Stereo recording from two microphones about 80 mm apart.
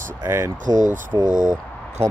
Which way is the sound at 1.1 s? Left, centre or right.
Right.